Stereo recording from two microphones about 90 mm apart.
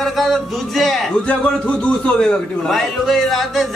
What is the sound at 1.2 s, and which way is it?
Speech, 15° left (ahead or behind).